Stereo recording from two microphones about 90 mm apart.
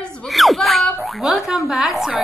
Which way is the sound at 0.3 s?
Centre (ahead or behind).